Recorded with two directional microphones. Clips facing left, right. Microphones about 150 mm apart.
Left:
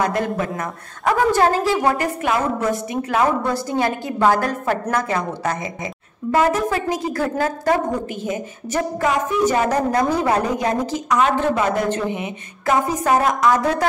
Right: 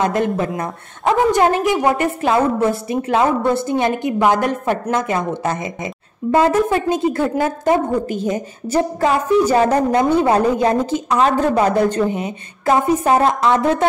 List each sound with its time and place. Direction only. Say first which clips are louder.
0.0 s a woman's voice: right 3 dB; 25° right (ahead or behind)
8.1 s a woman's voice: right 5 dB; 35° right (ahead or behind)